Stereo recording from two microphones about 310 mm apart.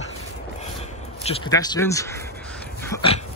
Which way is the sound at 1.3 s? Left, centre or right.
Centre.